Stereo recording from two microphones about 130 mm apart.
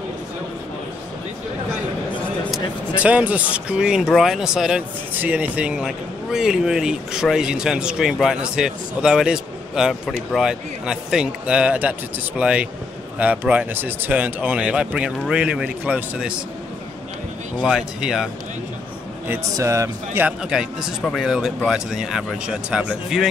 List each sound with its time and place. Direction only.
3.0 s speech: 10° right (ahead or behind)
17.6 s speech: 5° right (ahead or behind)
19.2 s speech: 20° right (ahead or behind)
20.2 s speech: 5° right (ahead or behind)